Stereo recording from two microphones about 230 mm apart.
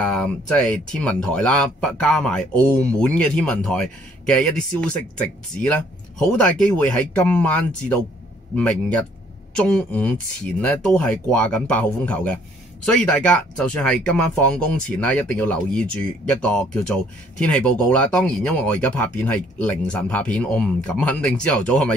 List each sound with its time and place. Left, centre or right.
0.0 s speech: centre